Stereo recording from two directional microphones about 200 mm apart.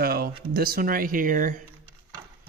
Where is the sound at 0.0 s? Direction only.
50° right (ahead or behind).